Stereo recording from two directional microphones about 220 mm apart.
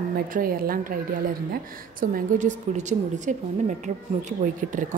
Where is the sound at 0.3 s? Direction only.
40° right (ahead or behind).